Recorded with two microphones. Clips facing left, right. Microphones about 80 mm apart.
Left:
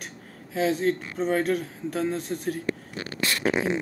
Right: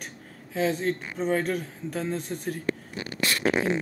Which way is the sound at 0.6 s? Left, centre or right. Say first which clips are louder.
Left 2 dB; centre.